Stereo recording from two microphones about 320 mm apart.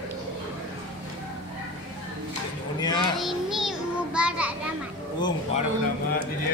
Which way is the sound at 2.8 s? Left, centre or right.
Centre.